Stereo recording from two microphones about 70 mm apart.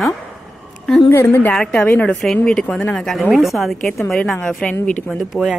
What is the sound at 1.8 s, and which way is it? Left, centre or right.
A woman's voice, left.